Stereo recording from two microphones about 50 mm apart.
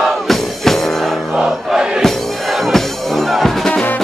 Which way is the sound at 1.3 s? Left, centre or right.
Centre.